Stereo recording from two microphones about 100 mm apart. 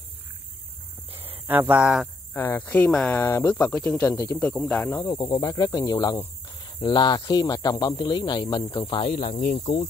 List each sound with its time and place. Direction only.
1.5 s speech: 15° right (ahead or behind)
2.3 s speech: 20° left (ahead or behind)
3.2 s speech: 25° left (ahead or behind)
3.4 s speech: 10° left (ahead or behind)
4.8 s speech: 25° left (ahead or behind)
5.1 s speech: 45° left (ahead or behind)
6.6 s speech: 50° left (ahead or behind); by 9.8 s 90° left